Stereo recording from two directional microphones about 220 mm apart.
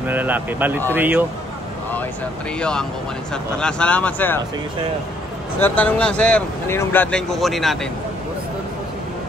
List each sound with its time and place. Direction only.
0.1 s a man's voice: 10° right (ahead or behind)
2.6 s speech: 5° left (ahead or behind)
5.6 s speech: 5° left (ahead or behind)